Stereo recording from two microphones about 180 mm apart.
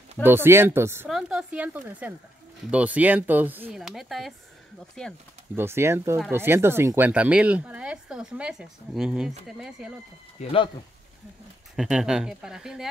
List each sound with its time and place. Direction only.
0.2 s speech: 10° right (ahead or behind)
1.0 s speech: centre (ahead or behind)
5.6 s speech: 15° right (ahead or behind)
10.4 s speech: 30° left (ahead or behind)
11.7 s speech: centre (ahead or behind)